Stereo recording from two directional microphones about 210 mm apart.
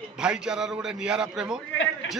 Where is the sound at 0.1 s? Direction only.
5° right (ahead or behind).